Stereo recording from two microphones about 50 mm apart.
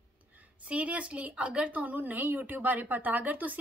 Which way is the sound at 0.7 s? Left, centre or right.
Right.